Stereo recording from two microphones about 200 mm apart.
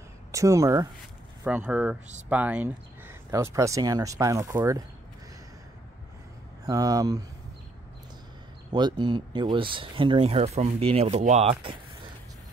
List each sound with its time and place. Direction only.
0.3 s speech: 15° right (ahead or behind)
6.6 s speech: 15° right (ahead or behind)
8.7 s speech: 20° right (ahead or behind)